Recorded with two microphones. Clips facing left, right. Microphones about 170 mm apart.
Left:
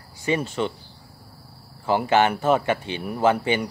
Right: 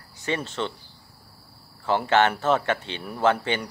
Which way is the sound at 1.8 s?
10° left (ahead or behind).